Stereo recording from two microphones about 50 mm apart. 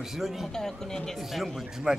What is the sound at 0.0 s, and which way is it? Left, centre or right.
Speech, centre.